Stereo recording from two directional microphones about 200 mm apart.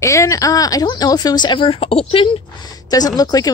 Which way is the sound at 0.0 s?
15° left (ahead or behind).